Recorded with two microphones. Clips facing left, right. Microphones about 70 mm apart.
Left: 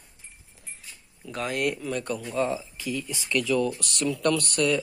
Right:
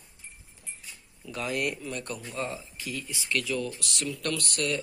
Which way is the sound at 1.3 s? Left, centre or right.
Left.